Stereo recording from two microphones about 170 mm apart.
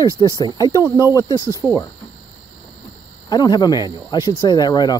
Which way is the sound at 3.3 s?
25° left (ahead or behind).